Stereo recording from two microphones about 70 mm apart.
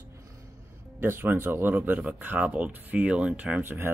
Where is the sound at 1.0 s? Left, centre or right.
Right; by 3.6 s centre.